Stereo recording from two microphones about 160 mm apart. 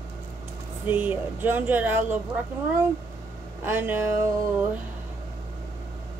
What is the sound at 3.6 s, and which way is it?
Speech, 10° right (ahead or behind).